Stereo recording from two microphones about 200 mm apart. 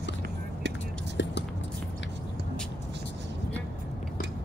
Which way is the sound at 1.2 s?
65° left (ahead or behind).